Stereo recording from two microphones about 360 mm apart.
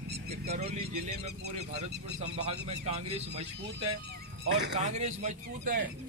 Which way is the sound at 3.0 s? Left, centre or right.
Centre.